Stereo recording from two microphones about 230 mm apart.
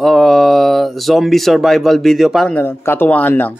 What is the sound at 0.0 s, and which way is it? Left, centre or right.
Speech, centre.